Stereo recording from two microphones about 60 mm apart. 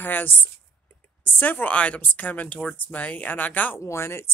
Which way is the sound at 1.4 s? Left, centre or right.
Left.